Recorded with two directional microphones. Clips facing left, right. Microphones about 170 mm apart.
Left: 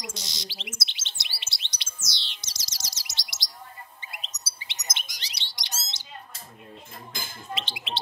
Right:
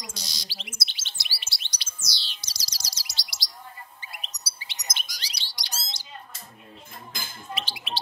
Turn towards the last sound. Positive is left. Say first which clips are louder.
# even
turn(degrees=20)  # may be behind; listen again after turning